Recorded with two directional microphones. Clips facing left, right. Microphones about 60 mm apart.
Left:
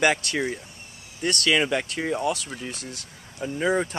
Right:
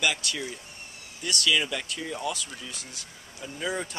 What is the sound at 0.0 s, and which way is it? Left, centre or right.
Speech, left.